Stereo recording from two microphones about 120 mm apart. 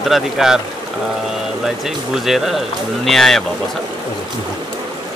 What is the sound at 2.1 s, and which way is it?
Speech, centre (ahead or behind).